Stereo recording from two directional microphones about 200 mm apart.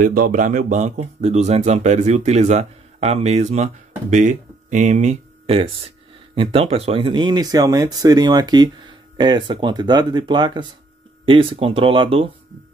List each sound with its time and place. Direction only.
0.0 s speech: 45° right (ahead or behind); by 12.3 s 25° right (ahead or behind)